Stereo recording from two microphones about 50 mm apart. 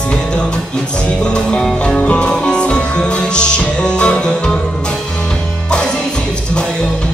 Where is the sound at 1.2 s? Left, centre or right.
Centre.